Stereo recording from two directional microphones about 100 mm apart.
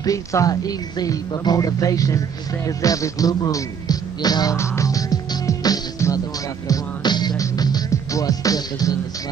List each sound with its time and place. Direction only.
0.0 s speech: 35° left (ahead or behind)
4.6 s music: 35° left (ahead or behind)
6.7 s music: 45° left (ahead or behind)